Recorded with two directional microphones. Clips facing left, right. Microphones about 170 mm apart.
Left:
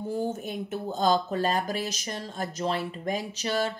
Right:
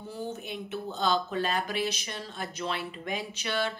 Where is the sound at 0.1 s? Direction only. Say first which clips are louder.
Left 5 dB; 45° left (ahead or behind).